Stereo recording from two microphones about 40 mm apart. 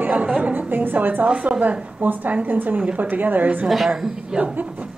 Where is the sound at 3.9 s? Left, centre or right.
Centre.